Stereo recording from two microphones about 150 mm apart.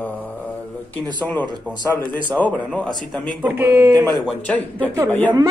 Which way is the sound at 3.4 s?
10° right (ahead or behind).